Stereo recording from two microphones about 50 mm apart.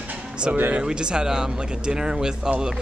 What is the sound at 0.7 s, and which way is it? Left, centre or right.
Speech, centre.